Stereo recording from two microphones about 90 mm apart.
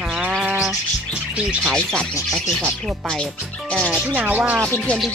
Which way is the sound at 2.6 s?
10° left (ahead or behind).